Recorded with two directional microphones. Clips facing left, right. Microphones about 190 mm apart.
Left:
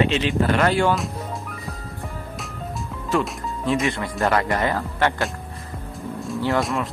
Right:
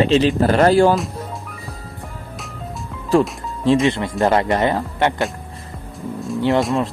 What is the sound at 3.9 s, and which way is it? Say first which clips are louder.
Speech: right 5 dB; 25° right (ahead or behind).